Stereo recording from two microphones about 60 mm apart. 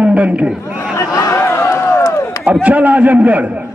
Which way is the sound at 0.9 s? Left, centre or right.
Left.